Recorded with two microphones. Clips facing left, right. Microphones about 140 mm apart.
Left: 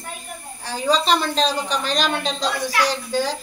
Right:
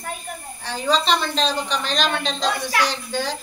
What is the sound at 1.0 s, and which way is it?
Speech, 5° left (ahead or behind).